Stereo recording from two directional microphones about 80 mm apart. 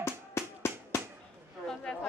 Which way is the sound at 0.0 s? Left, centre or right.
Left.